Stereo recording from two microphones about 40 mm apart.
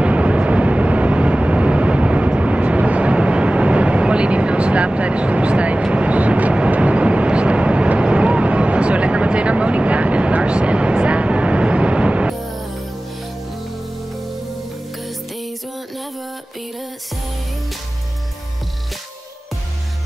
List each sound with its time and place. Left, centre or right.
0.0 s vehicle: right
12.4 s music: centre